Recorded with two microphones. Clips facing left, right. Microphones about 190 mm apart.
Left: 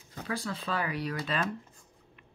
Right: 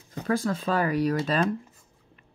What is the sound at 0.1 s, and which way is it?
Speech, 45° right (ahead or behind).